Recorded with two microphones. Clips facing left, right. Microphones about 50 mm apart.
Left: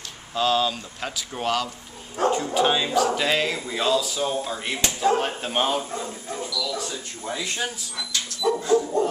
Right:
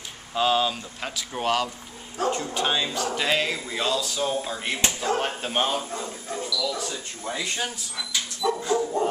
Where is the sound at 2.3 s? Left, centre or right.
Centre.